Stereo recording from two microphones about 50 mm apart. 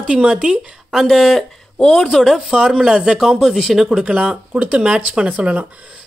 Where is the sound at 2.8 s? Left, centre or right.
Centre.